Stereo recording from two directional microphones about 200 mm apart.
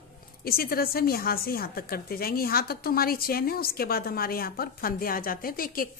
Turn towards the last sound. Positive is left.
turn(degrees=45)  # may be behind; listen again after turning